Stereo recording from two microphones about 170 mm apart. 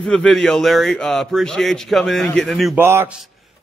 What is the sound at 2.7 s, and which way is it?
Speech, 15° right (ahead or behind).